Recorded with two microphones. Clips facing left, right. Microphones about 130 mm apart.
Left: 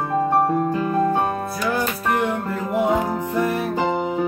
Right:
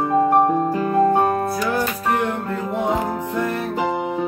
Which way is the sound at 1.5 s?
Centre (ahead or behind).